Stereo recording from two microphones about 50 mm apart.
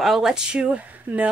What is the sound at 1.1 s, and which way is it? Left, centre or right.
Speech, right.